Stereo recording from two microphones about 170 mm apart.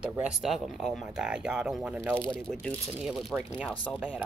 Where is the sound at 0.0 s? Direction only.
5° right (ahead or behind).